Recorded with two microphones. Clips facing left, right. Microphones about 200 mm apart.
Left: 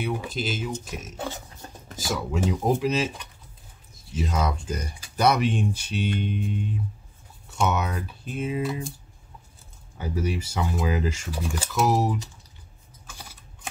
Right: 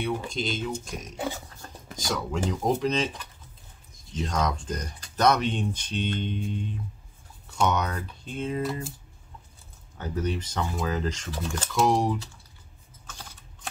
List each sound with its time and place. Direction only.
0.0 s speech: 5° left (ahead or behind)
1.1 s a sound: 15° right (ahead or behind)
1.6 s a sound: 15° left (ahead or behind)
2.0 s speech: 5° left (ahead or behind)
9.9 s speech: 10° left (ahead or behind)
13.0 s typing: 10° left (ahead or behind)